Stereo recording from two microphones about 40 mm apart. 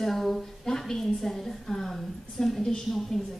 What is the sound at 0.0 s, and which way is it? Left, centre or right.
A woman's voice, centre.